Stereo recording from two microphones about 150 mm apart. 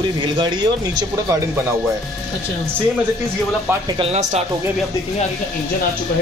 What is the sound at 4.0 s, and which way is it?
Speech, 50° right (ahead or behind).